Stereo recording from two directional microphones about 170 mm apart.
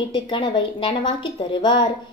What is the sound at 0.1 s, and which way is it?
A woman's voice, 30° left (ahead or behind).